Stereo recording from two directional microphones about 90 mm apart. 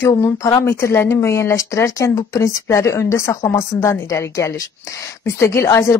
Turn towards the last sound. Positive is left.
turn(degrees=35)  # may be behind; listen again after turning